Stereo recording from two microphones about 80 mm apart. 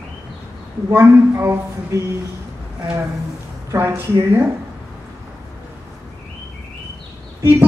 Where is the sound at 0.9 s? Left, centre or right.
Right.